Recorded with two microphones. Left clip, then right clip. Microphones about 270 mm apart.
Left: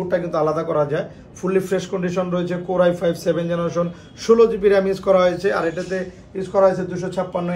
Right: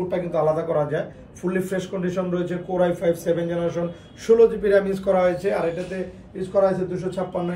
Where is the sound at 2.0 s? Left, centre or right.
Left.